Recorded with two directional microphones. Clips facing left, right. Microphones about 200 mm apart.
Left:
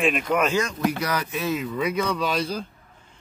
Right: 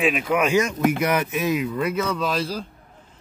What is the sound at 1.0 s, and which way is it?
Speech, 25° right (ahead or behind).